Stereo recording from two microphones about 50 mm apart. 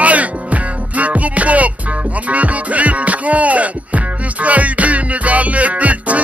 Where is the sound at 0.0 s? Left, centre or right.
Right.